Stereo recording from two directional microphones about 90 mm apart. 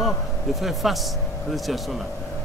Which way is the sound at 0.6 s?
Centre (ahead or behind).